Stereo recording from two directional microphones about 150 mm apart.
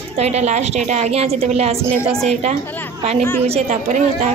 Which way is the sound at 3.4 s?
40° right (ahead or behind).